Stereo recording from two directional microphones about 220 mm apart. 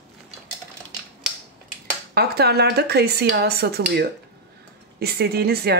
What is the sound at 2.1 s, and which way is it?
Speech, 45° right (ahead or behind).